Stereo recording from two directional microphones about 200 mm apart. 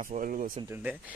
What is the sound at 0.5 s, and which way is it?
Speech, 10° right (ahead or behind).